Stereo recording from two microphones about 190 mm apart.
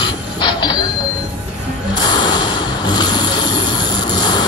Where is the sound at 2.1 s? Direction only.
25° left (ahead or behind).